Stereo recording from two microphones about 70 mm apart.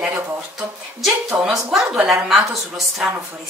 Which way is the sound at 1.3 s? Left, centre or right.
Right.